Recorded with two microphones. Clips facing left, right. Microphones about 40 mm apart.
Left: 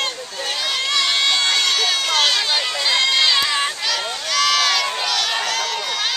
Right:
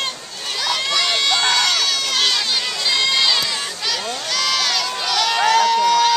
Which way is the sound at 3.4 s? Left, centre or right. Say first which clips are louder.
Left 4 dB; left.